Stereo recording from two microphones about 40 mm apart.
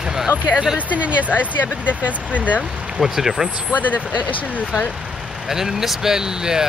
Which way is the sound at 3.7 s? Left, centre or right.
Left.